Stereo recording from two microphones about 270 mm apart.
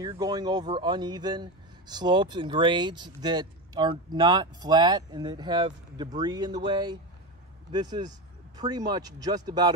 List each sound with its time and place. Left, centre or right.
0.0 s speech: centre